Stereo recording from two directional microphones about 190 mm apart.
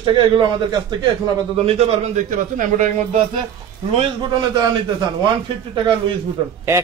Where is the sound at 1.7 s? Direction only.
35° right (ahead or behind).